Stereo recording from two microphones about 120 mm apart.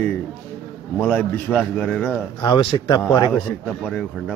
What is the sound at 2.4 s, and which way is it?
Speech, 35° left (ahead or behind).